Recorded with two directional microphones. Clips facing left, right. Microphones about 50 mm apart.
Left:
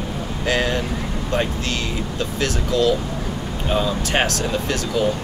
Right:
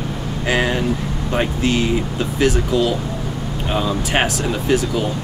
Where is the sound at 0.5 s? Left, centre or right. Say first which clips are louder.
Right 3 dB; centre.